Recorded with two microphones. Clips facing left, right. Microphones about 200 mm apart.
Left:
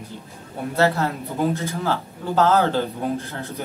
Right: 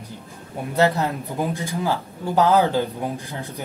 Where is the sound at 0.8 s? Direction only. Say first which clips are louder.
Right 1 dB; 15° right (ahead or behind).